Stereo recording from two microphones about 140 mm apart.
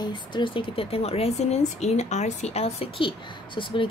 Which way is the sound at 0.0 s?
35° left (ahead or behind).